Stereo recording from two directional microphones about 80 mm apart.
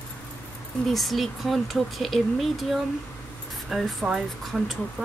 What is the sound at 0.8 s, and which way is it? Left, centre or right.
Speech, centre.